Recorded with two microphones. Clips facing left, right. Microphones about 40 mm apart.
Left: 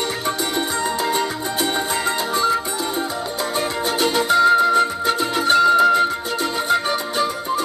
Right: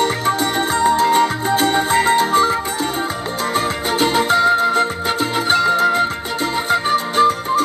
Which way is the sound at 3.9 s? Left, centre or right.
Right.